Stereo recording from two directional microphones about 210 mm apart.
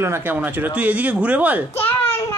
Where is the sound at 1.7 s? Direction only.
10° left (ahead or behind).